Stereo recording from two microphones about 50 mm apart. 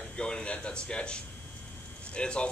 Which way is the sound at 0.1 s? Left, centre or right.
Centre.